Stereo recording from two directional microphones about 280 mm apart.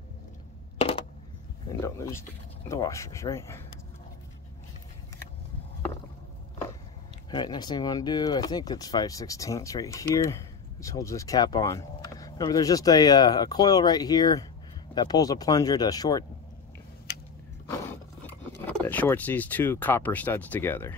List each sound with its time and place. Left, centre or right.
0.7 s a sound: left
1.7 s speech: centre
7.2 s speech: centre
17.6 s speech: centre